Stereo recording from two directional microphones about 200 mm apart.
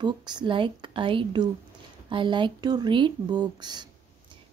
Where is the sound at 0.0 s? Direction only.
20° right (ahead or behind).